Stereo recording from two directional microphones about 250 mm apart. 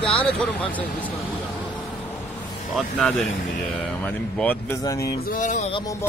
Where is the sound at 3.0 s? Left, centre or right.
Centre.